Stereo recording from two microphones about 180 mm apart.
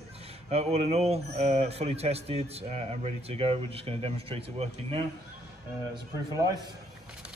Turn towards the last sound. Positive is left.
turn(degrees=-20)  # may be behind; listen again after turning